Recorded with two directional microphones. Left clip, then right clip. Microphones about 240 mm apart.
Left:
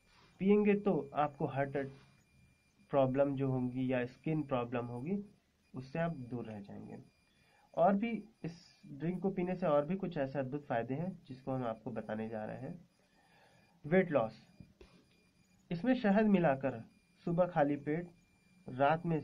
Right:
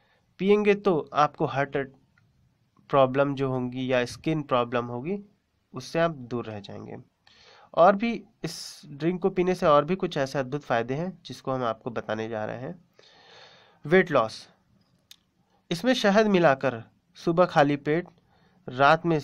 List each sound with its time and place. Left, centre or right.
0.4 s speech: right
2.9 s speech: right
13.4 s a sound: right
15.7 s speech: right